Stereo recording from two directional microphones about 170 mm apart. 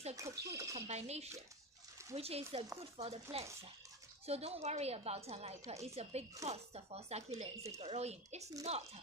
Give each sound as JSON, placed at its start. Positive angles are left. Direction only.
{"t": 0.1, "sound": "speech", "side_deg": -20}
{"t": 0.7, "sound": "speech", "side_deg": -40}